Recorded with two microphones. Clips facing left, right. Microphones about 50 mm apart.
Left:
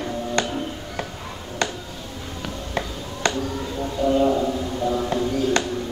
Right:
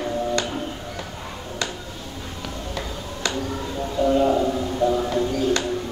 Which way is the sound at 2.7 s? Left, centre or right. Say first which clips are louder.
Left 2 dB; left.